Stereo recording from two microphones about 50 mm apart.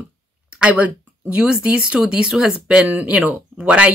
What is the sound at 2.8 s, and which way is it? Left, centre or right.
Speech, right.